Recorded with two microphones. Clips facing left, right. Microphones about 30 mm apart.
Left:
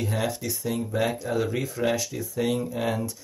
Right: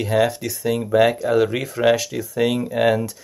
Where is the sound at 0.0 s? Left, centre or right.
Right.